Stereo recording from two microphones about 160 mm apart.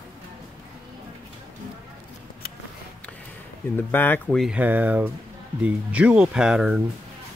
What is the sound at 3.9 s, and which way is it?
Speech, 10° left (ahead or behind).